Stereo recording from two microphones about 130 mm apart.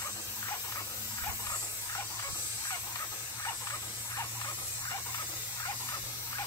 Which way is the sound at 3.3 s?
25° left (ahead or behind).